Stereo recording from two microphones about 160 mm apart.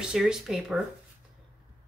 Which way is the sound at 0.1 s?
5° right (ahead or behind).